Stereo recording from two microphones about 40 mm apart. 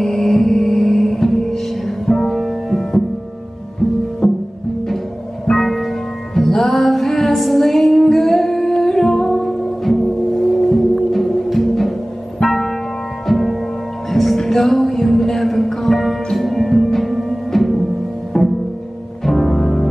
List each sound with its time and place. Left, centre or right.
0.0 s music: centre
4.2 s music: centre
5.5 s music: centre